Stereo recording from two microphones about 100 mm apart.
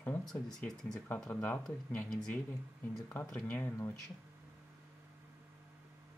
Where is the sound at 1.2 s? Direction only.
20° left (ahead or behind).